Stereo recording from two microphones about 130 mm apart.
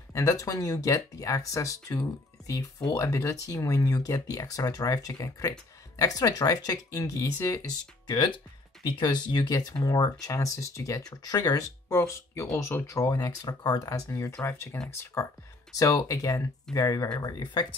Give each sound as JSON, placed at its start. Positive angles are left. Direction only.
{"t": 0.1, "sound": "speech", "side_deg": 25}